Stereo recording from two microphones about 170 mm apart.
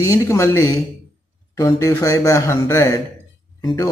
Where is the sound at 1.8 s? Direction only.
20° left (ahead or behind).